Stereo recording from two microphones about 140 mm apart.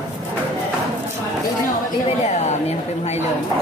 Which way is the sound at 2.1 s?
50° left (ahead or behind).